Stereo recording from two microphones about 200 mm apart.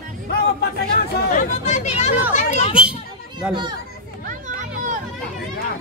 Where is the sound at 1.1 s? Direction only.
40° left (ahead or behind).